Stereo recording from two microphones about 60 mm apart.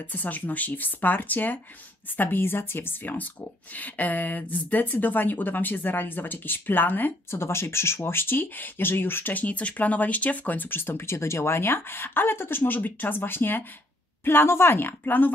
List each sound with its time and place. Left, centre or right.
0.1 s speech: left